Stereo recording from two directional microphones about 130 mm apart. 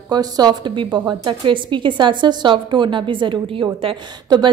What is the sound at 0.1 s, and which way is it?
A woman's voice, 30° right (ahead or behind).